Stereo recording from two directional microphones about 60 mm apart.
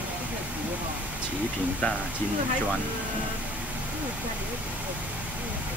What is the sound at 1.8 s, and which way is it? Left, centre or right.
Speech, left.